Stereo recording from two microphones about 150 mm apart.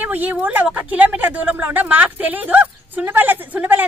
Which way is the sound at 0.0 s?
10° right (ahead or behind).